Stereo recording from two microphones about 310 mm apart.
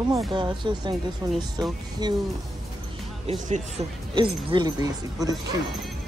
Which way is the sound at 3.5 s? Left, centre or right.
Centre.